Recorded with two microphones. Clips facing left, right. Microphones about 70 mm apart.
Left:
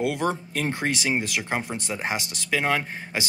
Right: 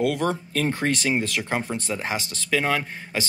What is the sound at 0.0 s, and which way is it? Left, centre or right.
Speech, left.